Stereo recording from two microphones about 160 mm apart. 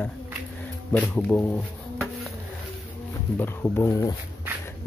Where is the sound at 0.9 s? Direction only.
10° left (ahead or behind).